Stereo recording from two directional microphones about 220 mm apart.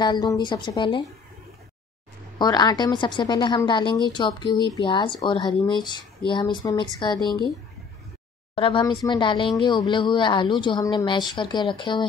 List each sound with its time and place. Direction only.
0.0 s a woman's voice: 20° left (ahead or behind)
2.3 s a woman's voice: 20° left (ahead or behind)
8.5 s a woman's voice: 25° left (ahead or behind)